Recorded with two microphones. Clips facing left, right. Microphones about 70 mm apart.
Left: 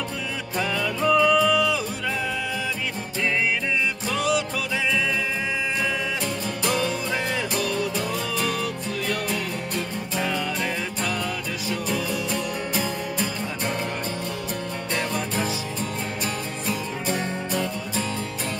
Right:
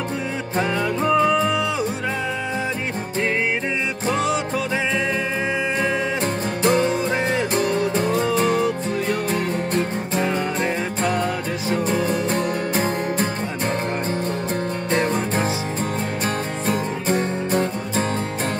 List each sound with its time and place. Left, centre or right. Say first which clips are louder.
0.6 s music: right 4 dB; right
4.1 s music: right 3 dB; right
6.6 s music: right 7 dB; right
14.9 s music: right 6 dB; right
16.6 s music: right 5 dB; right